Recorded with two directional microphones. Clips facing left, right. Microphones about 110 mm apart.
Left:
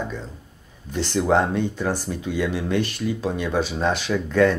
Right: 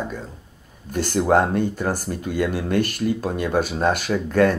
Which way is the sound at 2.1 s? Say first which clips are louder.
Right 1 dB; 45° right (ahead or behind).